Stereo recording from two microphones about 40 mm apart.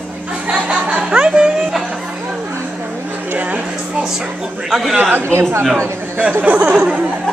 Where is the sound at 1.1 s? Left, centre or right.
Right.